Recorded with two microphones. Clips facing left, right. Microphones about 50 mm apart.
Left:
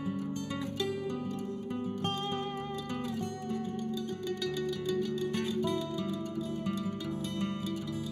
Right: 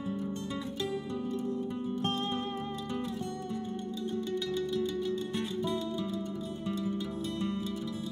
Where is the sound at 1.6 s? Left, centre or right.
Left.